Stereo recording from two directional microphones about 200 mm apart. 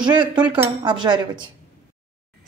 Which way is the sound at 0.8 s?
25° right (ahead or behind).